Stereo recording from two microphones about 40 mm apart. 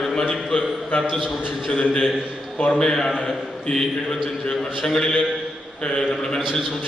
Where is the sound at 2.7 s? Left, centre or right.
Centre.